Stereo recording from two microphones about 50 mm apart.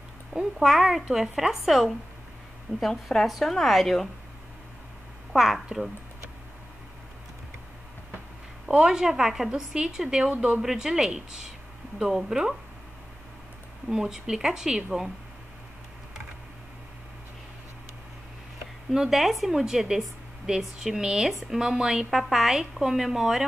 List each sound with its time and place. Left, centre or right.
0.3 s a woman's voice: centre
2.8 s speech: centre
5.3 s a woman's voice: centre
8.6 s a woman's voice: centre
13.8 s a woman's voice: centre
18.9 s a woman's voice: centre